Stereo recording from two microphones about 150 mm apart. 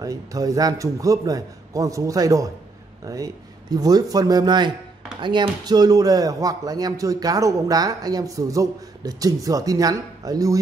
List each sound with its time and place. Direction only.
0.0 s speech: 25° right (ahead or behind)
3.7 s speech: 25° right (ahead or behind)